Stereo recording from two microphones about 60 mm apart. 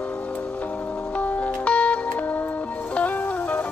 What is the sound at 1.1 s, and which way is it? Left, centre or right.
Music, left.